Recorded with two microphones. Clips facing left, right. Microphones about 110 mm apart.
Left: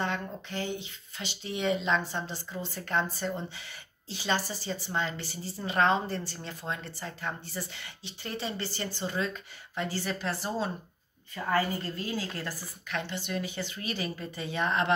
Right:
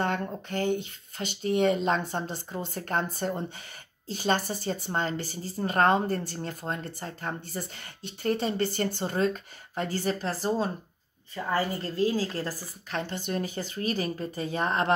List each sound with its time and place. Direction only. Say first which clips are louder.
0.0 s a woman's voice: right 4 dB; 50° right (ahead or behind)